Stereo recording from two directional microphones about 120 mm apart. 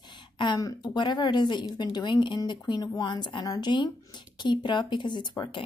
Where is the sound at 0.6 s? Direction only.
35° left (ahead or behind).